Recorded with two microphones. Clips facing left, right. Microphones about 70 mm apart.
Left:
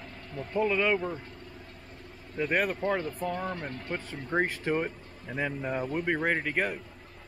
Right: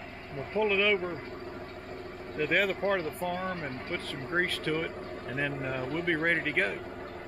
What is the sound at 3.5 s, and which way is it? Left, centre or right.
Speech, right.